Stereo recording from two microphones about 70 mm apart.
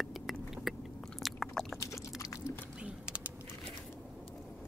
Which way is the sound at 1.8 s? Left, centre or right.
Left.